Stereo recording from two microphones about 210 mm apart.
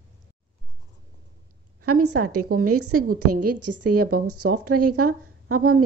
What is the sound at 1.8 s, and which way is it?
A woman's voice, 90° right.